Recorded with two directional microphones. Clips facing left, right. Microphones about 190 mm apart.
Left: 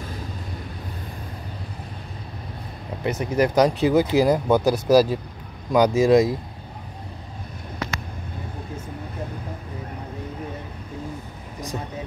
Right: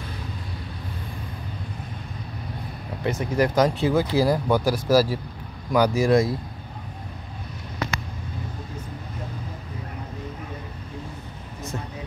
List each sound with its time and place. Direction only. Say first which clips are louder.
3.0 s speech: left 1 dB; 20° left (ahead or behind)